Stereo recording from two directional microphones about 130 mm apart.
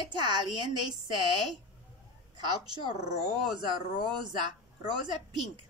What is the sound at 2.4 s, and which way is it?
Speech, 35° right (ahead or behind).